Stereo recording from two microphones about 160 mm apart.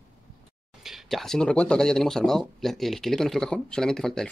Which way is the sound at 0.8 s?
Centre (ahead or behind).